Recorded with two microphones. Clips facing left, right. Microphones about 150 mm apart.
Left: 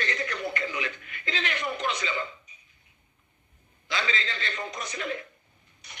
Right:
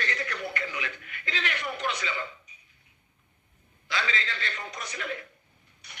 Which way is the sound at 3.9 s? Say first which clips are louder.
Left 1 dB; 20° left (ahead or behind).